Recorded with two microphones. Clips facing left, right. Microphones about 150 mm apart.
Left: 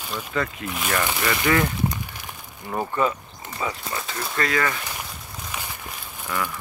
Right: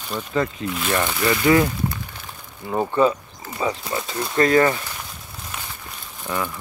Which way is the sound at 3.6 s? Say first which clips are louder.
Right 5 dB; 25° right (ahead or behind).